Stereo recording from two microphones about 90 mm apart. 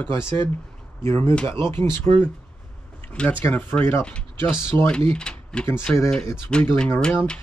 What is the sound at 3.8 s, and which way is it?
Speech, 25° left (ahead or behind).